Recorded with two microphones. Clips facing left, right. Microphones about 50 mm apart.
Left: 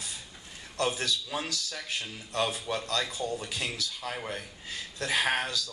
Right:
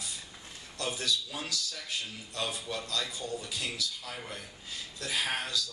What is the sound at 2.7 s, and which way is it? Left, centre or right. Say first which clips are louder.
Speech: left 4 dB; left.